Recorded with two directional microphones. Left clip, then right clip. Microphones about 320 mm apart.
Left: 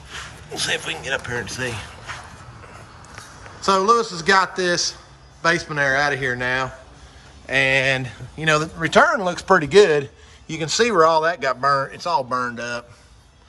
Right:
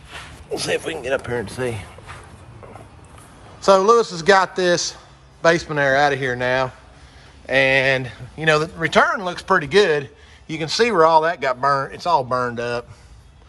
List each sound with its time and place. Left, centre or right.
0.6 s speech: right
3.6 s a man's voice: centre